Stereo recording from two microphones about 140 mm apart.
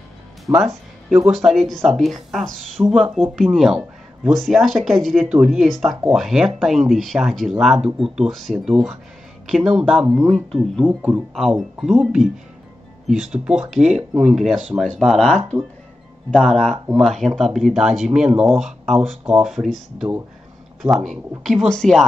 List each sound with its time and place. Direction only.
0.5 s speech: 15° right (ahead or behind)
1.1 s speech: 5° right (ahead or behind)